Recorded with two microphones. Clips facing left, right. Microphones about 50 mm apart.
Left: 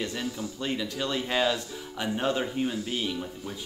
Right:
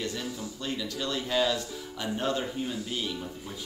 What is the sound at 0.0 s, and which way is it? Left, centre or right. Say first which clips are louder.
Speech: left 2 dB; left.